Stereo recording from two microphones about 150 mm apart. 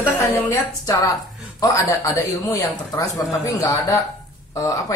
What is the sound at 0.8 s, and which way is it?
Speech, 20° left (ahead or behind).